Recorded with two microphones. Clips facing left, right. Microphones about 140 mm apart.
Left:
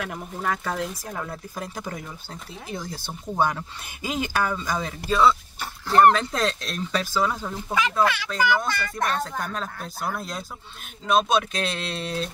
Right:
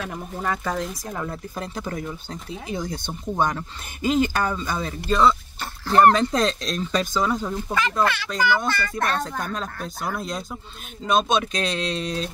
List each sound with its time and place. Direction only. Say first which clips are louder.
0.1 s speech: right 1 dB; centre (ahead or behind)
8.8 s speech: right 1 dB; centre (ahead or behind)